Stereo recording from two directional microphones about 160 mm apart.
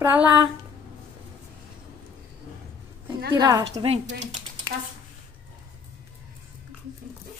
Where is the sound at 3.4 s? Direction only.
25° right (ahead or behind).